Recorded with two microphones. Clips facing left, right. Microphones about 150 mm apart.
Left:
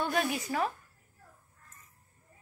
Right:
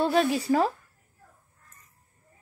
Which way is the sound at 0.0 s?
30° right (ahead or behind).